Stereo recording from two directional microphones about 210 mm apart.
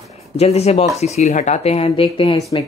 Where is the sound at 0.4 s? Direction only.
30° left (ahead or behind).